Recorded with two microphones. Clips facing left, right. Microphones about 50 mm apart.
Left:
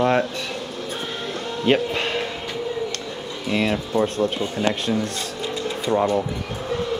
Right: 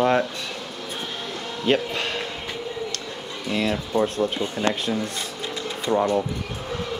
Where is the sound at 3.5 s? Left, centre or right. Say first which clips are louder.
Left 2 dB; centre.